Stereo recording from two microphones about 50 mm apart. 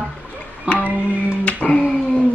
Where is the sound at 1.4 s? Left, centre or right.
Left.